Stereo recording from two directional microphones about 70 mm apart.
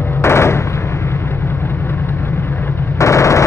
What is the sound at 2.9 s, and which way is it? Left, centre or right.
Machine gun, left.